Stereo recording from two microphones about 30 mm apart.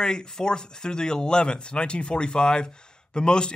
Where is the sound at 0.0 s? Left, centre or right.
Left.